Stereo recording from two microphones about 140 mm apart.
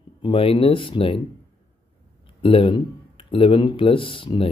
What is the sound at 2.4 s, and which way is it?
Speech, 40° left (ahead or behind).